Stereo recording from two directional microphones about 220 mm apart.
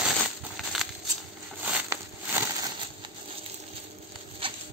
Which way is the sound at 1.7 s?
10° right (ahead or behind).